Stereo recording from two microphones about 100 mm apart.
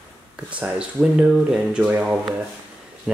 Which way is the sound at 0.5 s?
15° right (ahead or behind).